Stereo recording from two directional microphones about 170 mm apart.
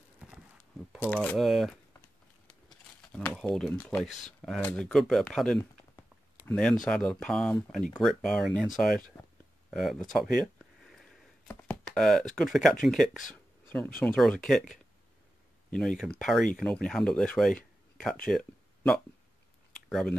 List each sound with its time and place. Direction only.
0.9 s speech: 10° left (ahead or behind)
2.4 s crumpling: 5° left (ahead or behind)
4.4 s speech: 10° left (ahead or behind)
9.7 s a sound: centre (ahead or behind)
11.4 s chopping: 10° left (ahead or behind)
12.8 s speech: centre (ahead or behind)
13.3 s a sound: 5° left (ahead or behind)
13.9 s speech: 5° left (ahead or behind)
15.7 s speech: 5° left (ahead or behind)
18.2 s a sound: 5° left (ahead or behind)
19.9 s speech: centre (ahead or behind)